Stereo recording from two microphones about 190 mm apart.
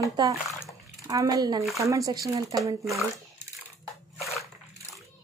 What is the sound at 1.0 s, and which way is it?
Speech, 20° right (ahead or behind).